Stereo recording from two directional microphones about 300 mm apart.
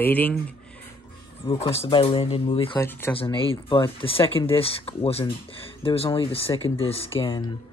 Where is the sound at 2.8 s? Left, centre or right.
Centre.